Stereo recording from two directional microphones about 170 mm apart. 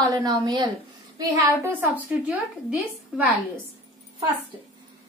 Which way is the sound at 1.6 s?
10° right (ahead or behind).